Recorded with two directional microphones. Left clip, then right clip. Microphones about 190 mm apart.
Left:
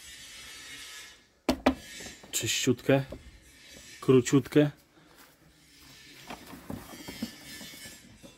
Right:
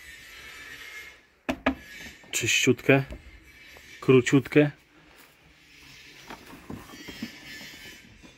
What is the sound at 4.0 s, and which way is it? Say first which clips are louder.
Speech: right 3 dB; centre (ahead or behind).